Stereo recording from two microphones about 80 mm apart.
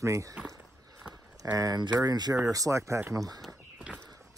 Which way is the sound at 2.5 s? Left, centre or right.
Right.